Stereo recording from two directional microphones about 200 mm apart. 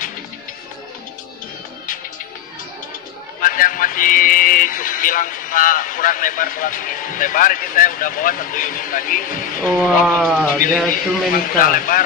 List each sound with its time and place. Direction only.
3.4 s speech: 45° left (ahead or behind)
9.6 s speech: centre (ahead or behind)
10.9 s speech: 45° left (ahead or behind)